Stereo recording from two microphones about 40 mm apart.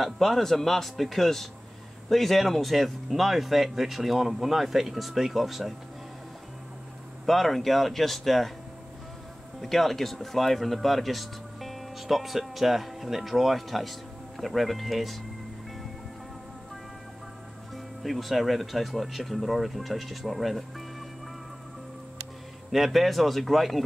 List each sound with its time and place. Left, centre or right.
0.0 s a man's voice: centre
7.2 s speech: centre
9.6 s speech: centre
18.0 s speech: centre
22.7 s speech: centre